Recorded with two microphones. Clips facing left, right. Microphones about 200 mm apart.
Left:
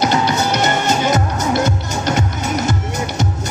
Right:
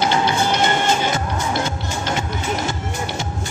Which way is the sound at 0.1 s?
40° left (ahead or behind).